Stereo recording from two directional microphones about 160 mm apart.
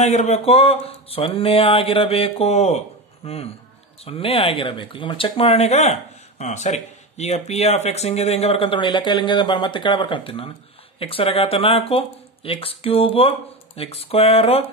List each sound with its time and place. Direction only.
0.0 s speech: 45° left (ahead or behind)